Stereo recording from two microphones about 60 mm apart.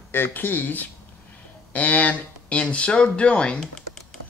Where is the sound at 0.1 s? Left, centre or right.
Left; by 3.7 s centre.